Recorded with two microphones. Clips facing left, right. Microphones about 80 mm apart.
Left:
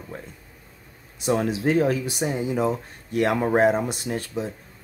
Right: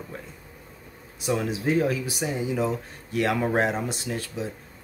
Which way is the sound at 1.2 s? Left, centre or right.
Left.